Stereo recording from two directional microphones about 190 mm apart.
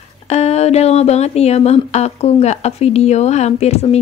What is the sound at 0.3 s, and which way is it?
A woman's voice, 35° left (ahead or behind).